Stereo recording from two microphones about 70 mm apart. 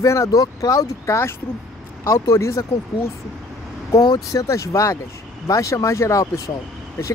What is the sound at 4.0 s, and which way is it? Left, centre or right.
Speech, left.